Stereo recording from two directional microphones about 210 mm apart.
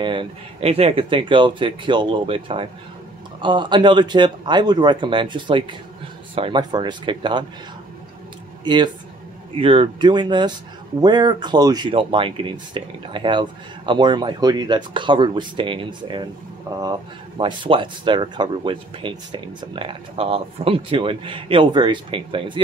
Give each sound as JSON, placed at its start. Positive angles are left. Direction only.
{"t": 0.0, "sound": "speech", "side_deg": -25}
{"t": 8.6, "sound": "speech", "side_deg": -20}